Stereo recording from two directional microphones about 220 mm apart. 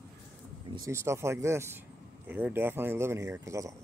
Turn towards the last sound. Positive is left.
turn(degrees=-15)  # may be behind; listen again after turning